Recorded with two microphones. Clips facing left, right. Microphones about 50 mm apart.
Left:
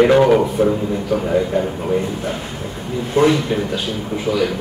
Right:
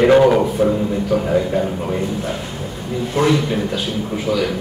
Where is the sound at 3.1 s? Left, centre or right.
Centre.